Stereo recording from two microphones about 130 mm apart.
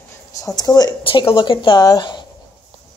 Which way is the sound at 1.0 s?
45° left (ahead or behind).